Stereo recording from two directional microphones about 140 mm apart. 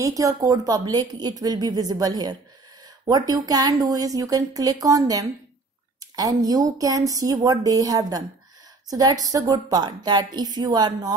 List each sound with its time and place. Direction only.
0.0 s a woman's voice: 25° right (ahead or behind)